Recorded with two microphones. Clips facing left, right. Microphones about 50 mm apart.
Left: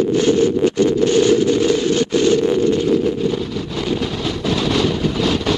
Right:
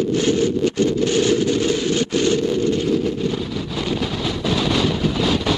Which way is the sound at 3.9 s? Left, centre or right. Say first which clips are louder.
Left 2 dB; centre.